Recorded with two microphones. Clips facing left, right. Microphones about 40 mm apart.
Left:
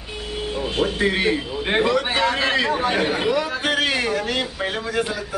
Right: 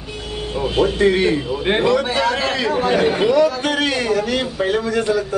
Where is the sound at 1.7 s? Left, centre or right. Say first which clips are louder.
Right 2 dB; centre.